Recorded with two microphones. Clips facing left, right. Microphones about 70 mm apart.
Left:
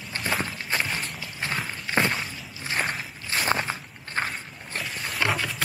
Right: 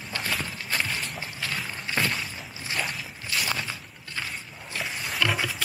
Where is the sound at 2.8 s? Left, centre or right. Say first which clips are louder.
Left 4 dB; left.